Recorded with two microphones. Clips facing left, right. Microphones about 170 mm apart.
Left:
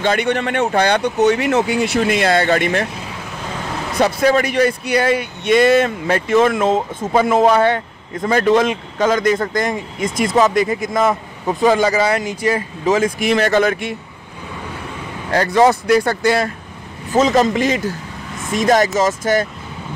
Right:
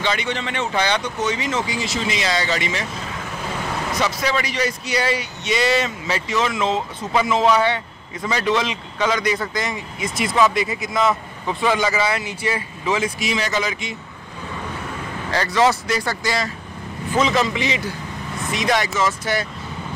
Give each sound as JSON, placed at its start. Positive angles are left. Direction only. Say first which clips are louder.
{"t": 0.0, "sound": "speech", "louder": "left 7 dB", "side_deg": 55}
{"t": 3.9, "sound": "speech", "louder": "left 9 dB", "side_deg": 55}
{"t": 15.3, "sound": "speech", "louder": "left 5 dB", "side_deg": 50}
{"t": 17.1, "sound": "speech", "louder": "left 6 dB", "side_deg": 45}